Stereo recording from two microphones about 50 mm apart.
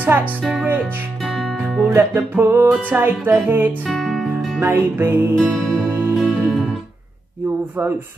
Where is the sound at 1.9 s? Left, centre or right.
Right.